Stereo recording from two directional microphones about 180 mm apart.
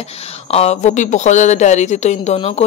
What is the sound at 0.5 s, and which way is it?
A woman's voice, 35° left (ahead or behind).